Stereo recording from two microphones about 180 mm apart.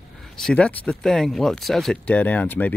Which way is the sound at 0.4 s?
5° left (ahead or behind).